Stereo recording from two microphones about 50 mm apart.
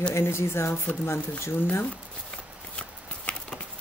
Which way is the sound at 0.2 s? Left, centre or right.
Left.